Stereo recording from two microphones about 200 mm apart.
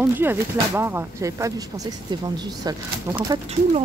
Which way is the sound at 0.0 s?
10° right (ahead or behind).